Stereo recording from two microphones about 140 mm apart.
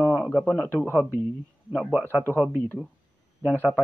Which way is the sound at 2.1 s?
15° left (ahead or behind).